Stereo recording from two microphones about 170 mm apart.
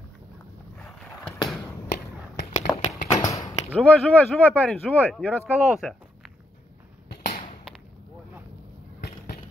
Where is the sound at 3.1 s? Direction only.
20° left (ahead or behind).